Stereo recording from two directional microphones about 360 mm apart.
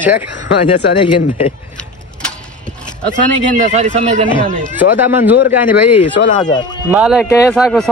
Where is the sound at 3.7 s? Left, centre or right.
Centre.